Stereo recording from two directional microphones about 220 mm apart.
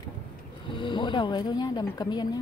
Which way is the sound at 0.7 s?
20° left (ahead or behind).